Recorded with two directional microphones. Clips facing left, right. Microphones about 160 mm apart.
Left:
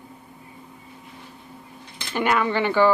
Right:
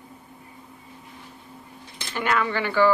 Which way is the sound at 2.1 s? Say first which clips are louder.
Left 3 dB; 15° left (ahead or behind).